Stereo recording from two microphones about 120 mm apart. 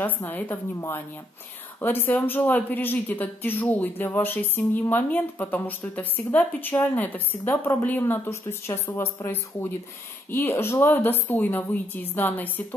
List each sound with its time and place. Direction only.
0.0 s speech: 15° left (ahead or behind)